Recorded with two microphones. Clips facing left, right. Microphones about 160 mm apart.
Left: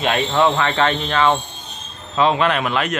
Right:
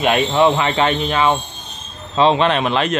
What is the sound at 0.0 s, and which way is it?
A man's voice, 15° right (ahead or behind).